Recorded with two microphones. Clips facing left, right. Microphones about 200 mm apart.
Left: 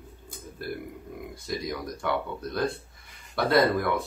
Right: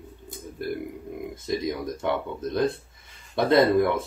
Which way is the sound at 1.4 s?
20° right (ahead or behind).